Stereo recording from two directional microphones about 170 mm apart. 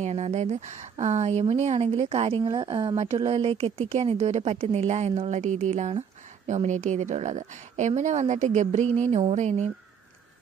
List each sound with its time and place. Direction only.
0.0 s a woman's voice: 40° right (ahead or behind)